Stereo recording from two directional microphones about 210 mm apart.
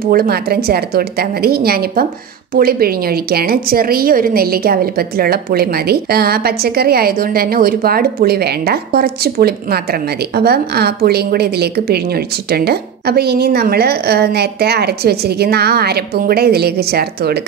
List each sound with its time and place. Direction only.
0.1 s a woman's voice: 45° right (ahead or behind)